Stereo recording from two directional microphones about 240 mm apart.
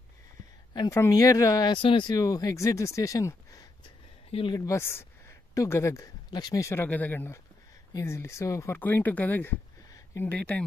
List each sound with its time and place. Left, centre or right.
0.7 s speech: centre
4.6 s speech: centre